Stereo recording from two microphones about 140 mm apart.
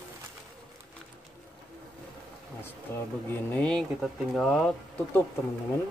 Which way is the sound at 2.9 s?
20° left (ahead or behind).